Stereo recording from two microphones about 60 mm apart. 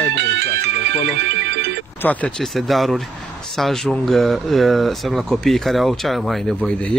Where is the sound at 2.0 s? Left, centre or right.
Left.